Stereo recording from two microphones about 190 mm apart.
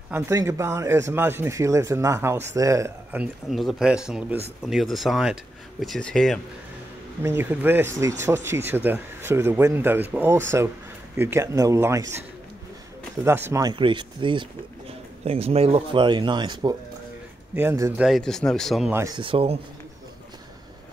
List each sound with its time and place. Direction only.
0.1 s a man's voice: 15° right (ahead or behind); by 6.4 s centre (ahead or behind)
7.2 s a man's voice: 10° right (ahead or behind)
13.2 s speech: 15° right (ahead or behind)
17.6 s a man's voice: 15° right (ahead or behind)
18.0 s speech: centre (ahead or behind)
18.9 s speech: 20° right (ahead or behind)